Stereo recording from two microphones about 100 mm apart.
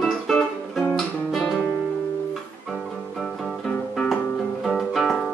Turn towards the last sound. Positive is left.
turn(degrees=0)  # may be behind; listen again after turning